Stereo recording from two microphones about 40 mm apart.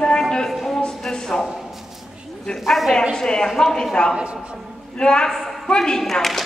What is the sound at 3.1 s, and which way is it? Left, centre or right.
Speech, centre.